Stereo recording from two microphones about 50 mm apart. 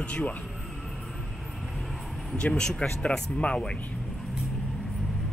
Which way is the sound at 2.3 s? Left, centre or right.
Left.